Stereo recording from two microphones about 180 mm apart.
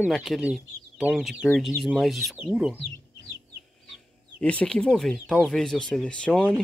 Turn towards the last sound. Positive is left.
turn(degrees=5)  # may be behind; listen again after turning